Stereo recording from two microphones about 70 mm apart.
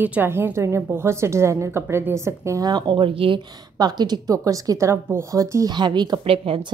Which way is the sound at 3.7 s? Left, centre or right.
Right.